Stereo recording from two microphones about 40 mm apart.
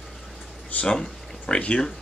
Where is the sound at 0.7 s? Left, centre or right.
Left.